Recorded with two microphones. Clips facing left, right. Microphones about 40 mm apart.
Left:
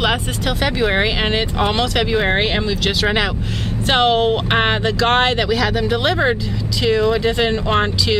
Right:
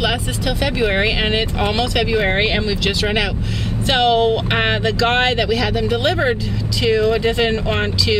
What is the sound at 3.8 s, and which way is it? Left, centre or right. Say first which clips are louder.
Speech: even; left.